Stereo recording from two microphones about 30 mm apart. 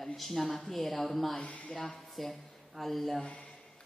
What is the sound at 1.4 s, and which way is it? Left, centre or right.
Speech, left.